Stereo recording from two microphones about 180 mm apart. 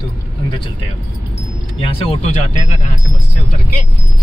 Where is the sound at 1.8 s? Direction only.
35° left (ahead or behind).